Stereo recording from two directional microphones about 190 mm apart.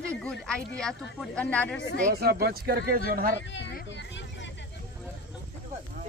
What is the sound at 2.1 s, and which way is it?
Speech, 55° right (ahead or behind).